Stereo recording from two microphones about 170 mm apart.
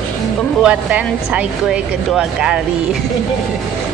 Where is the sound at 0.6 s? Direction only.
5° right (ahead or behind).